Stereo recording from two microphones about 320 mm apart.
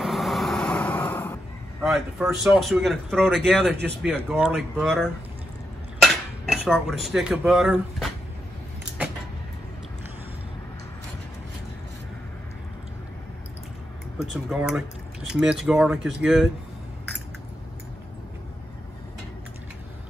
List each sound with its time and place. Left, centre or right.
0.0 s vehicle: centre
2.4 s speech: centre
6.4 s speech: centre
14.2 s speech: centre